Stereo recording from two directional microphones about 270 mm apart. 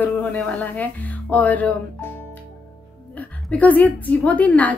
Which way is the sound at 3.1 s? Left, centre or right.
Centre.